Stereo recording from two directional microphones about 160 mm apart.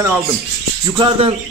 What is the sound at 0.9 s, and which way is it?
Speech, 30° right (ahead or behind).